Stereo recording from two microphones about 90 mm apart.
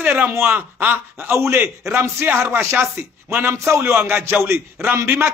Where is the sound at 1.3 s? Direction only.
25° right (ahead or behind).